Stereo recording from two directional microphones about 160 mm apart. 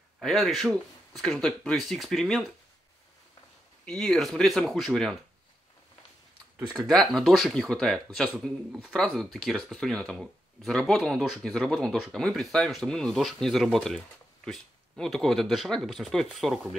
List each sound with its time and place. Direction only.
0.2 s speech: centre (ahead or behind)
3.8 s speech: 5° left (ahead or behind)
6.7 s speech: centre (ahead or behind)